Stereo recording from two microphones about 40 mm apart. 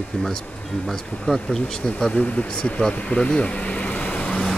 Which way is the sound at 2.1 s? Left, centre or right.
Left.